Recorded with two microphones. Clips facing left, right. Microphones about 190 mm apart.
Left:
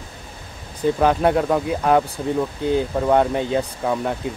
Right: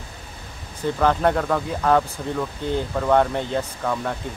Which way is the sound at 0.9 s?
15° left (ahead or behind).